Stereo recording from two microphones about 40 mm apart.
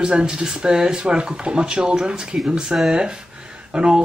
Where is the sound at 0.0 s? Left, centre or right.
Right.